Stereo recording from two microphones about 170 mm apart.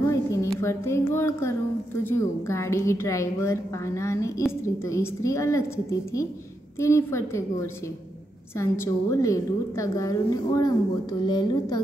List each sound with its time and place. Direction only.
0.1 s a sound: 15° left (ahead or behind)
2.0 s a woman's voice: 15° left (ahead or behind)
8.5 s a woman's voice: 15° left (ahead or behind)